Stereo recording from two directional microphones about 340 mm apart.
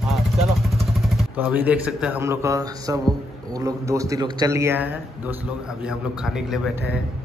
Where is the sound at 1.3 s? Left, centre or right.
Centre.